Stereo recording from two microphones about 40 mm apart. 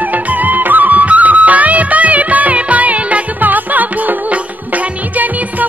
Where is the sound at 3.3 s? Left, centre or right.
Right.